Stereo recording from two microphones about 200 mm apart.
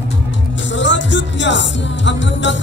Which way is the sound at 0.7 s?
65° left (ahead or behind).